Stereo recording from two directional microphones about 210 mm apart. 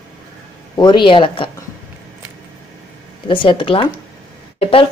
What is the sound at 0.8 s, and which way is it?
Speech, 20° left (ahead or behind).